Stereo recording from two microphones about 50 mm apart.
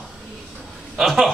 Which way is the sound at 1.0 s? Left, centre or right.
Centre.